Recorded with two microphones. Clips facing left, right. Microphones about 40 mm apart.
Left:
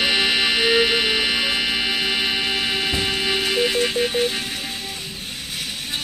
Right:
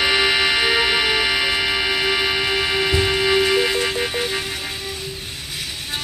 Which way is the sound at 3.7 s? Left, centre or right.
Centre.